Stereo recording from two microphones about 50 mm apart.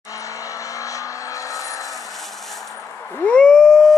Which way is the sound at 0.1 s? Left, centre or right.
Left.